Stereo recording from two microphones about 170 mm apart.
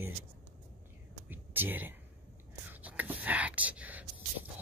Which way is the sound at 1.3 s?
10° right (ahead or behind).